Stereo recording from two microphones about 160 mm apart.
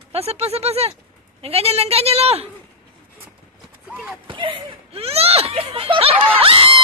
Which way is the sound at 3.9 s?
5° right (ahead or behind).